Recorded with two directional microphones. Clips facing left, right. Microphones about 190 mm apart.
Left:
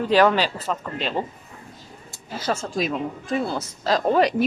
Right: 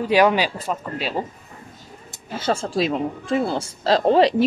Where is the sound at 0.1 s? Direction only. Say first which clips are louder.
Right 1 dB; 10° right (ahead or behind).